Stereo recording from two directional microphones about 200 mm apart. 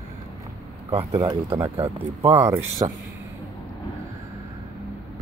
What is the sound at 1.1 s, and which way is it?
Speech, 20° right (ahead or behind).